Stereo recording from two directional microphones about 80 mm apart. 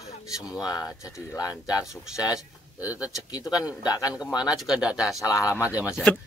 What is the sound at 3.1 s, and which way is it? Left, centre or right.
Speech, left.